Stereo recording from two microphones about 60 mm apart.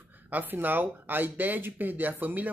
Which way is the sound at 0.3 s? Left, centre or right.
Right.